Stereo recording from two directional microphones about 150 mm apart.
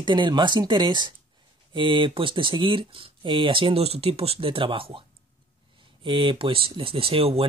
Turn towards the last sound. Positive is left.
turn(degrees=-40)  # may be behind; listen again after turning